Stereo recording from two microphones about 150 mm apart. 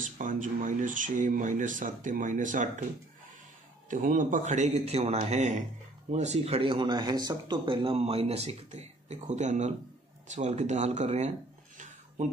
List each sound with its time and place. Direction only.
0.0 s speech: 60° right (ahead or behind)
3.9 s speech: 60° right (ahead or behind)